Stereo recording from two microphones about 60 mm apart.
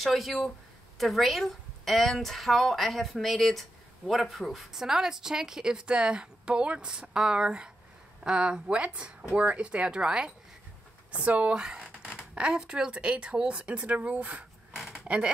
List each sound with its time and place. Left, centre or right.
0.0 s a woman's voice: centre